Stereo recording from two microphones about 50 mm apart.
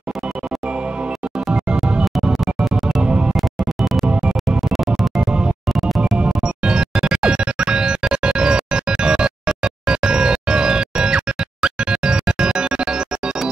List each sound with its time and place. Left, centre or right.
3.0 s music: right
3.3 s music: centre
4.0 s music: centre
4.5 s music: centre
5.2 s music: centre
5.8 s music: centre
6.1 s music: centre